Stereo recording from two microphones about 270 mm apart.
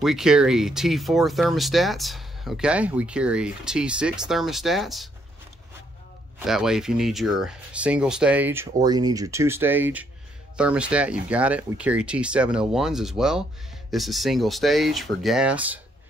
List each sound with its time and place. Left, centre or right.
0.0 s speech: centre
6.4 s speech: centre